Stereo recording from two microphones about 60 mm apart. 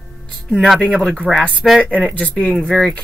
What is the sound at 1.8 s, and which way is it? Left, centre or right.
Speech, right.